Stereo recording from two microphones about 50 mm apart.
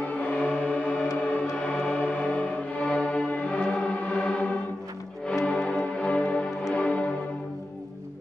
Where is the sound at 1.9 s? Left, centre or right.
Left.